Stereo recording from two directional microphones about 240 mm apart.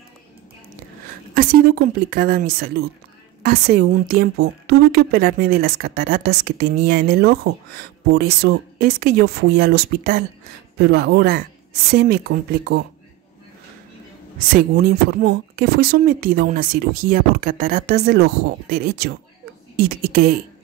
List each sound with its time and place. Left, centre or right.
1.3 s a woman's voice: right
14.5 s a woman's voice: right